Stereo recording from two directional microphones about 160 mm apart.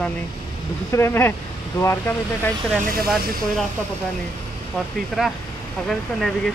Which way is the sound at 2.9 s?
65° right (ahead or behind).